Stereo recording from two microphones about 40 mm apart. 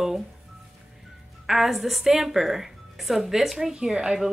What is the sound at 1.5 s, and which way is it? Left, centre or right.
A woman's voice, centre.